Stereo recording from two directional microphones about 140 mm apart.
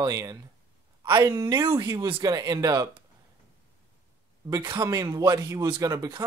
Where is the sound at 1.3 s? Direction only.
20° right (ahead or behind).